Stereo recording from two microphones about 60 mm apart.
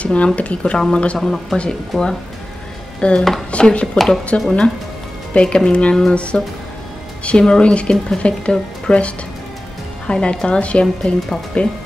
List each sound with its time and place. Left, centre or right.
0.0 s speech: left